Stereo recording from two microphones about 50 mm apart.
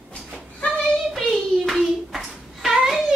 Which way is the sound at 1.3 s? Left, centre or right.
Centre.